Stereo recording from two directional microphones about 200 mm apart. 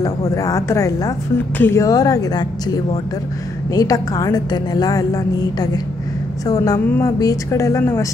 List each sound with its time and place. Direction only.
0.3 s a woman's voice: 15° left (ahead or behind)